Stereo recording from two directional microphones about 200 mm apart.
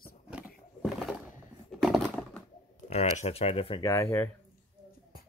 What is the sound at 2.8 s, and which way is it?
Speech, 35° left (ahead or behind).